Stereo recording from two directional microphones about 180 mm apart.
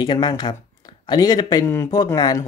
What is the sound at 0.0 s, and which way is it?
Speech, 25° left (ahead or behind).